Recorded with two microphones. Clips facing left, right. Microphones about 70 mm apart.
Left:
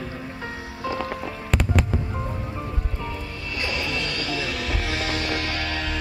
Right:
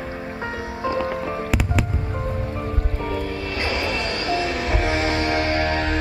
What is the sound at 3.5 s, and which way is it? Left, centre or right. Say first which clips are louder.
Music: right 2 dB; right.